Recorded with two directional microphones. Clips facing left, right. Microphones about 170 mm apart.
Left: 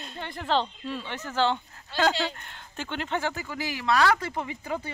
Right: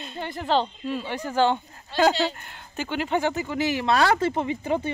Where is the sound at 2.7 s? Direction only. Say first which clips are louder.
Right 5 dB; 5° right (ahead or behind).